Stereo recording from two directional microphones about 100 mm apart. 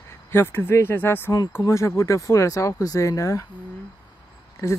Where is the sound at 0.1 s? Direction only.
25° left (ahead or behind).